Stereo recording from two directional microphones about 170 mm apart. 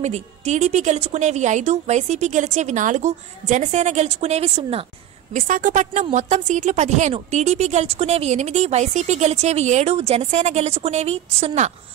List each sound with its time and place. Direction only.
0.0 s a woman's voice: 40° right (ahead or behind)
5.3 s a woman's voice: 50° right (ahead or behind)